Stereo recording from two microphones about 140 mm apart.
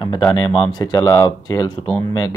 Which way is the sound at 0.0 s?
30° left (ahead or behind).